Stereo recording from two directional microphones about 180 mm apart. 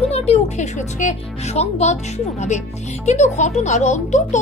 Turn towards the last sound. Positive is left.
turn(degrees=40)  # may be behind; listen again after turning